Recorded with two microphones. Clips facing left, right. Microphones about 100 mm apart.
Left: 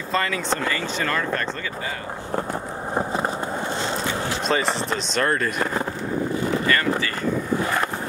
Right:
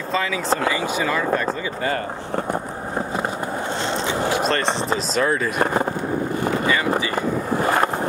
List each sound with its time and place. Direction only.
0.1 s speech: centre (ahead or behind)
4.5 s speech: centre (ahead or behind)
7.6 s vehicle: 40° right (ahead or behind)